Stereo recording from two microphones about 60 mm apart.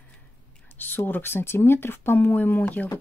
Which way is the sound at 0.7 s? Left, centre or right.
Left.